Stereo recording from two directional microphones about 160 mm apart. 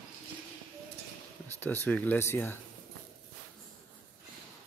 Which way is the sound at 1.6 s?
10° left (ahead or behind).